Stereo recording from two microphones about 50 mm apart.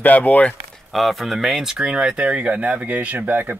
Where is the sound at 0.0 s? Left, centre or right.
Left.